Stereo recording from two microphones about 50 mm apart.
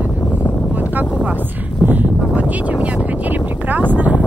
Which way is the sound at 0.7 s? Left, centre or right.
Right.